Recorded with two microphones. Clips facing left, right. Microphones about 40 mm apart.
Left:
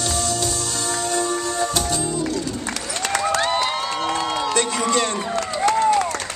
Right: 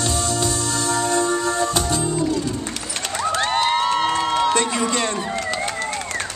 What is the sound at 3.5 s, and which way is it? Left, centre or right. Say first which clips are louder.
Crowd: right 4 dB; right.